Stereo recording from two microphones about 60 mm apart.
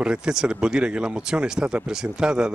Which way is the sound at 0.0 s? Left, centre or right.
Centre.